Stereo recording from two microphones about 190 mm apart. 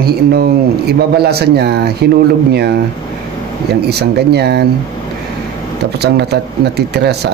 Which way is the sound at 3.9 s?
60° right (ahead or behind).